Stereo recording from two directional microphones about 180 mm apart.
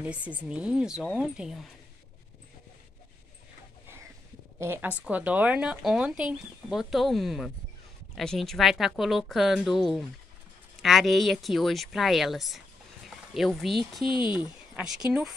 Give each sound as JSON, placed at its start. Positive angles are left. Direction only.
{"t": 0.0, "sound": "speech", "side_deg": -5}
{"t": 4.6, "sound": "speech", "side_deg": -15}
{"t": 14.0, "sound": "speech", "side_deg": 25}
{"t": 14.3, "sound": "speech", "side_deg": -5}